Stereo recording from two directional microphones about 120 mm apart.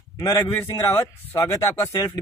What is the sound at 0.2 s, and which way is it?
Speech, 20° left (ahead or behind).